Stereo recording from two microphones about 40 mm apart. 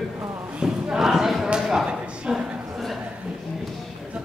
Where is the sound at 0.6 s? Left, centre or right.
Right.